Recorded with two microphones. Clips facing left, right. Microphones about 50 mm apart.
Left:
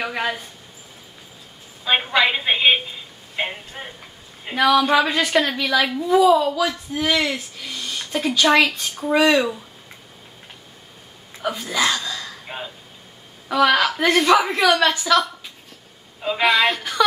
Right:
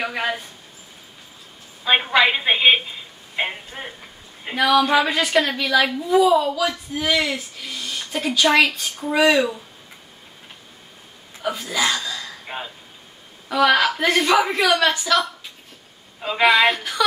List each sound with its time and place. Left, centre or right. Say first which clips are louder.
0.0 s a woman's voice: even; centre
1.9 s a woman's voice: right 2 dB; centre
11.4 s a woman's voice: left 1 dB; centre